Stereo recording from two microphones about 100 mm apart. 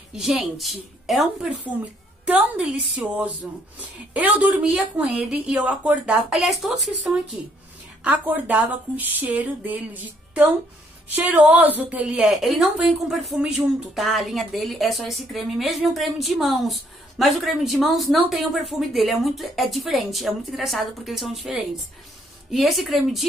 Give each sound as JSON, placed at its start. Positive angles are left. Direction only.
{"t": 0.1, "sound": "a woman's voice", "side_deg": -5}
{"t": 2.2, "sound": "a woman's voice", "side_deg": -15}
{"t": 8.0, "sound": "a woman's voice", "side_deg": -15}
{"t": 12.2, "sound": "a woman's voice", "side_deg": 0}